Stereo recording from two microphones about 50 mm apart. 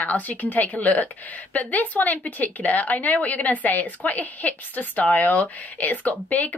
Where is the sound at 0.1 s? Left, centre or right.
Left.